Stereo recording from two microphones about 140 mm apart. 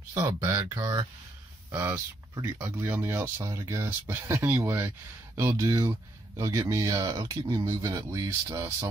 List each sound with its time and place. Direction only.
0.1 s speech: 20° right (ahead or behind)